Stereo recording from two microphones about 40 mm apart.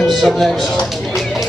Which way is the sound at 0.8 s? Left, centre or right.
Centre.